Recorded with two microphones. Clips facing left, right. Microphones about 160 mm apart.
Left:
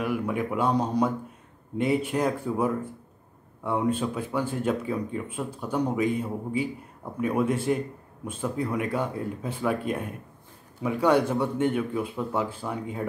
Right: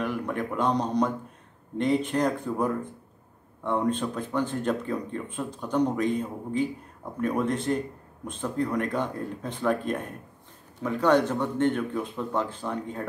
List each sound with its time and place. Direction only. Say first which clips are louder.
0.0 s speech: left 2 dB; 5° left (ahead or behind)